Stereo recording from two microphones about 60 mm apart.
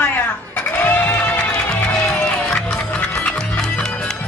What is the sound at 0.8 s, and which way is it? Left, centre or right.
Music, left.